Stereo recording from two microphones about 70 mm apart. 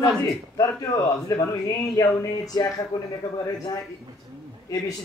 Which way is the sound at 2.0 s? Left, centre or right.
Left.